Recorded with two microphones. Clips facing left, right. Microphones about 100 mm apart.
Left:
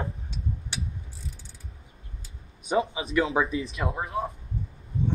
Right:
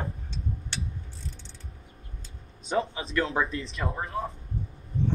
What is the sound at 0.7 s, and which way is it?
Ratchet, 10° left (ahead or behind).